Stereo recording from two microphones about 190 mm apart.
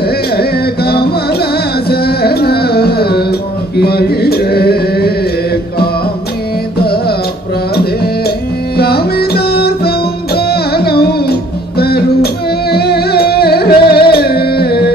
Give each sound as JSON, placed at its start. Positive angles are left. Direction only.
{"t": 0.4, "sound": "music", "side_deg": 55}
{"t": 6.8, "sound": "music", "side_deg": 55}